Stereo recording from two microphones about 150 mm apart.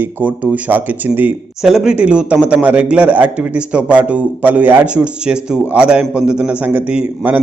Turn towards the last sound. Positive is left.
turn(degrees=-10)  # may be behind; listen again after turning